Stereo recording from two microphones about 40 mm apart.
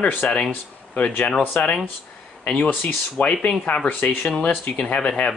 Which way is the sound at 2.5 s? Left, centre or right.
Left.